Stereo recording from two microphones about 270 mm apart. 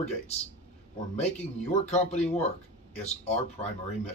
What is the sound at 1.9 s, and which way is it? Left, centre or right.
Speech, left.